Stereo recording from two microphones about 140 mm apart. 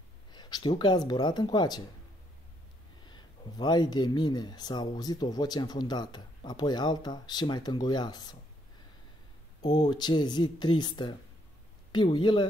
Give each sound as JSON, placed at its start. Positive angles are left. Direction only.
{"t": 0.3, "sound": "speech", "side_deg": 30}
{"t": 3.1, "sound": "speech", "side_deg": 30}
{"t": 9.6, "sound": "speech", "side_deg": 35}